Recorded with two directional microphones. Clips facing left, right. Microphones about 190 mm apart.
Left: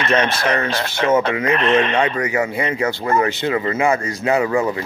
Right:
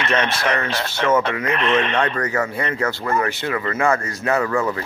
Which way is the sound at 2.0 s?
10° left (ahead or behind).